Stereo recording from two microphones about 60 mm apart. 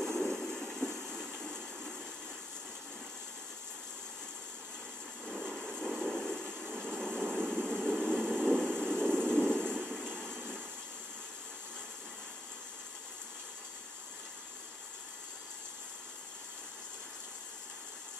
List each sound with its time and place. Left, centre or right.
0.0 s train: centre
5.4 s vehicle: centre
8.1 s a sound: centre
8.5 s vehicle: centre
9.5 s a sound: centre
10.3 s vehicle: right